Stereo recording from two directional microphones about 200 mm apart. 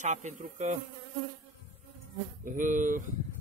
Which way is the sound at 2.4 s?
40° right (ahead or behind).